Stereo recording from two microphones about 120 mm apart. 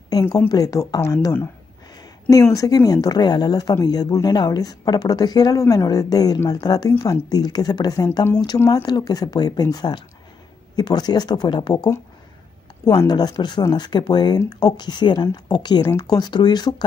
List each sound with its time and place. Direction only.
0.5 s a woman's voice: 30° left (ahead or behind)